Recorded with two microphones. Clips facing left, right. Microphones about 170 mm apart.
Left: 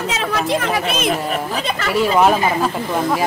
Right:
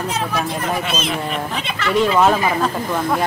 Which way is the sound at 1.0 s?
45° left (ahead or behind).